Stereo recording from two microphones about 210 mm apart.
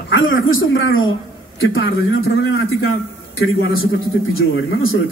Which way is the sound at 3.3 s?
75° left (ahead or behind).